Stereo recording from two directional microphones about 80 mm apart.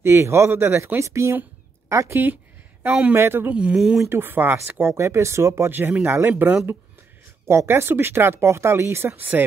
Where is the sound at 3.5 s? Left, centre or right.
Centre.